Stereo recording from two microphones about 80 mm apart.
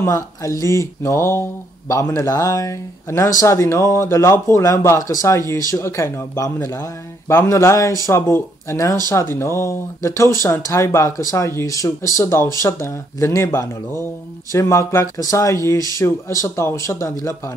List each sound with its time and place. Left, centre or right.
0.0 s speech: left